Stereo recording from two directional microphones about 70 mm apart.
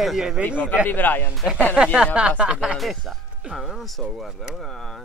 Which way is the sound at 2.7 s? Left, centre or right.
Centre.